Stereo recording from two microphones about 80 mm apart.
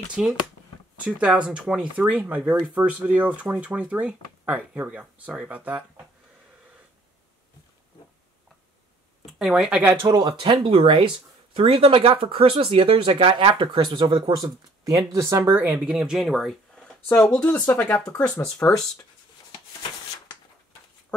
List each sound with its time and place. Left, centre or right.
0.2 s speech: centre
9.2 s a sound: centre
9.7 s speech: centre
10.0 s speech: right
14.9 s speech: right
15.8 s speech: centre
18.6 s speech: left